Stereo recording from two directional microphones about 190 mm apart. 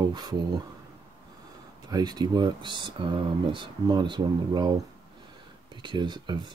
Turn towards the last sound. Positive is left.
turn(degrees=-25)  # may be behind; listen again after turning